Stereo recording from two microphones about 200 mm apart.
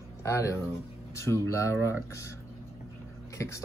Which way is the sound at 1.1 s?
15° left (ahead or behind).